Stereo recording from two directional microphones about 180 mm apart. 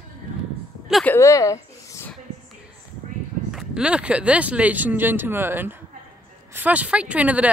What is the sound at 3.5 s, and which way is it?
Speech, 5° right (ahead or behind).